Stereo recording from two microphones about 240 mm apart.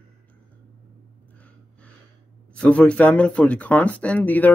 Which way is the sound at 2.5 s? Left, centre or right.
Centre.